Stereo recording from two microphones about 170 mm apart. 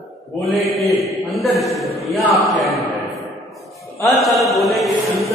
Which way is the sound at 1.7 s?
Centre (ahead or behind).